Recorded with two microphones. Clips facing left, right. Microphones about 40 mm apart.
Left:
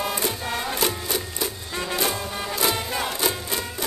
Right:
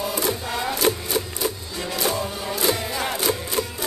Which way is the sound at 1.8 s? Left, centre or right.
Left.